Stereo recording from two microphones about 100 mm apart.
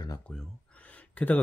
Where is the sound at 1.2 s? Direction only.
15° left (ahead or behind).